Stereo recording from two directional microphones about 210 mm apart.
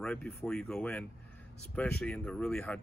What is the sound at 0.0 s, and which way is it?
Speech, 5° left (ahead or behind).